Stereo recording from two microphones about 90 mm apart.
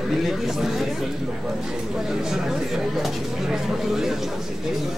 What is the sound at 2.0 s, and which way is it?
Speech, 5° right (ahead or behind).